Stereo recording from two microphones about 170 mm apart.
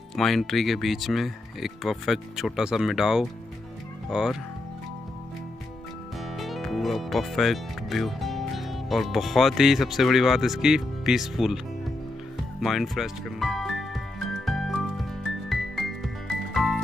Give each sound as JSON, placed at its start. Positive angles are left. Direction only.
{"t": 0.1, "sound": "speech", "side_deg": 0}
{"t": 6.3, "sound": "speech", "side_deg": 0}
{"t": 12.5, "sound": "music", "side_deg": 0}